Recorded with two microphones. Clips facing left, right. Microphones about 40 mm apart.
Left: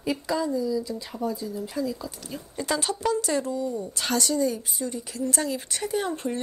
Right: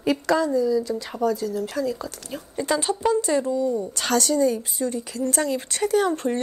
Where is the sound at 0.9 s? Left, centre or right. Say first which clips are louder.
Right 6 dB; right.